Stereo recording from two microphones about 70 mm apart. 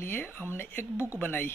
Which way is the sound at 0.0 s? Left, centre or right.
Left.